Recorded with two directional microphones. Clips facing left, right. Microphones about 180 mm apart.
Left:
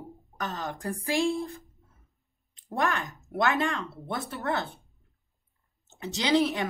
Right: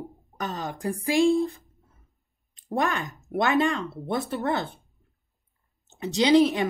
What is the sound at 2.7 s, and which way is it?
Speech, 15° right (ahead or behind).